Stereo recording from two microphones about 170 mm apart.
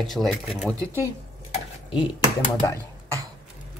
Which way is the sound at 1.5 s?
30° left (ahead or behind).